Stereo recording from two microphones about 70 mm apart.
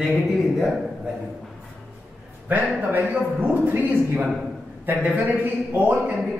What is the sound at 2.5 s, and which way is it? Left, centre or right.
A man's voice, right.